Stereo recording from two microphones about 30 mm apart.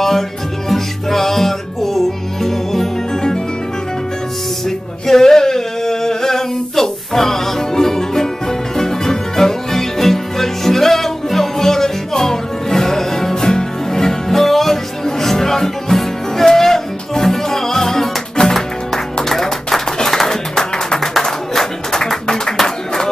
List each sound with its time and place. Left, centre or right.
0.7 s music: centre
4.6 s male singing: centre
14.3 s music: centre
20.2 s music: left
21.2 s clapping: centre